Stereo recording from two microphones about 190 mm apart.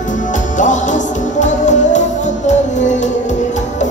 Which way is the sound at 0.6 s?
40° left (ahead or behind).